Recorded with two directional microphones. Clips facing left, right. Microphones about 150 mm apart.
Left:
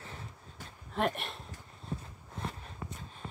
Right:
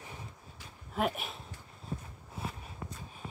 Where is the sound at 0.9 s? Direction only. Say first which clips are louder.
Even; 5° right (ahead or behind).